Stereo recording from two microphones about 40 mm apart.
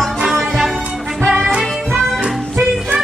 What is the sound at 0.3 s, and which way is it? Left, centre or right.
Music, centre.